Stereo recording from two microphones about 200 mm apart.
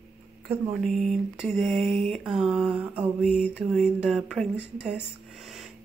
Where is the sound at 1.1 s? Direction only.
5° right (ahead or behind).